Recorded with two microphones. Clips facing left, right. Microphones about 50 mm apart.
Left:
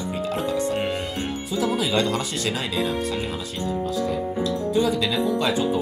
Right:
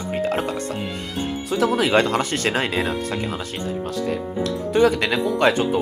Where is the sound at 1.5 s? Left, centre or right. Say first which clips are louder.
Right 5 dB; right.